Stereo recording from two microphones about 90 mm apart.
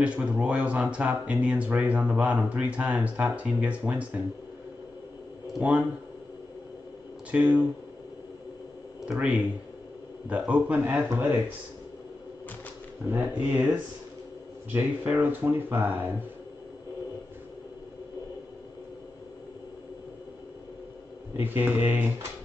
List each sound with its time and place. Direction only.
0.0 s speech: 15° right (ahead or behind)
5.6 s speech: 15° right (ahead or behind)
7.2 s speech: 15° right (ahead or behind)
9.0 s speech: 10° right (ahead or behind)
13.1 s speech: 20° right (ahead or behind)
15.0 s speech: 20° right (ahead or behind)
21.4 s speech: 20° right (ahead or behind)